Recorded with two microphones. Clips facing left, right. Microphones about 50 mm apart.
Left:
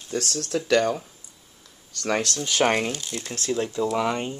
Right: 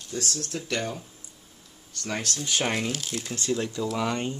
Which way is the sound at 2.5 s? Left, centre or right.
Left.